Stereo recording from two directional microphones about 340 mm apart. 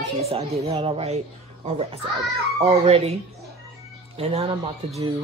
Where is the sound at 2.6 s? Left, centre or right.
Centre.